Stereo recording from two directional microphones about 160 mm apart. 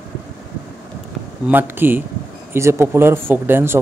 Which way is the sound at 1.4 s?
15° right (ahead or behind).